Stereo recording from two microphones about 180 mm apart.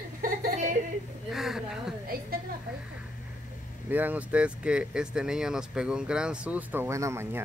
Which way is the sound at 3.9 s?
10° right (ahead or behind).